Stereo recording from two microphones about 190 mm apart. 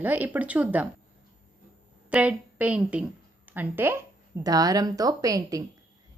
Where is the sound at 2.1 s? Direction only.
5° right (ahead or behind).